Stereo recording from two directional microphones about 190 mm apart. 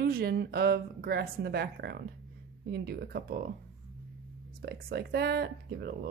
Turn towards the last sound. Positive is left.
turn(degrees=-60)  # may be behind; listen again after turning